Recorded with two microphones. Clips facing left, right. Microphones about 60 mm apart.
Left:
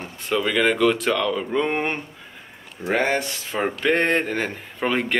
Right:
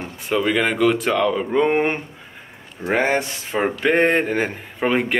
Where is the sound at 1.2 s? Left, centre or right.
Centre.